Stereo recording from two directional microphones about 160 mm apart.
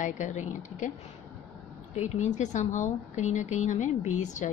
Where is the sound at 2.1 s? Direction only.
50° left (ahead or behind).